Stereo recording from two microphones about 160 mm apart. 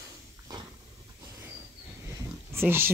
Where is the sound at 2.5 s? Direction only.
15° right (ahead or behind).